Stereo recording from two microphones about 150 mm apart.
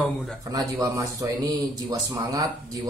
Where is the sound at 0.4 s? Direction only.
25° right (ahead or behind).